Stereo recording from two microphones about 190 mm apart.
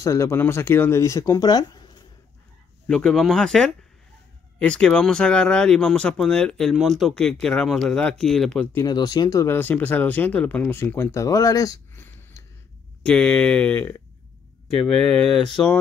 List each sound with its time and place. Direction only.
0.0 s speech: 15° left (ahead or behind)
2.9 s speech: 5° left (ahead or behind)
8.8 s speech: 20° left (ahead or behind)
15.0 s speech: 5° left (ahead or behind)